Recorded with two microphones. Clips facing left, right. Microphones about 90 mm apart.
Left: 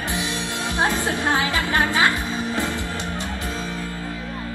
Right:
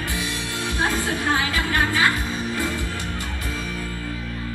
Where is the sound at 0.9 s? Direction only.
20° left (ahead or behind).